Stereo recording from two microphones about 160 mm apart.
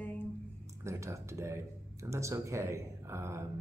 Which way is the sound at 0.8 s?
20° right (ahead or behind).